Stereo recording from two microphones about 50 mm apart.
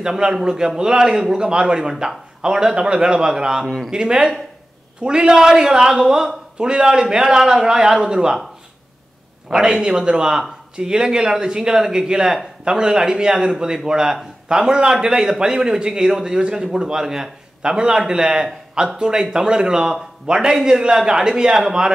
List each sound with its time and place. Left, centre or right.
0.0 s a man's voice: centre
9.5 s a man's voice: centre